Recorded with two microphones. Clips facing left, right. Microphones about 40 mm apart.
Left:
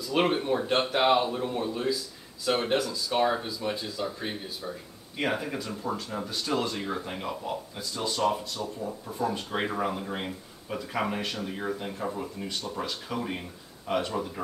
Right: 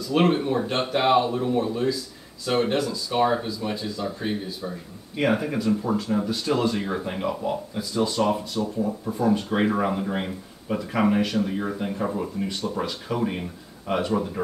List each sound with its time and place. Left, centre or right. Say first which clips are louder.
0.1 s speech: right 4 dB; centre
8.2 s speech: right 4 dB; right
9.1 s speech: right 6 dB; centre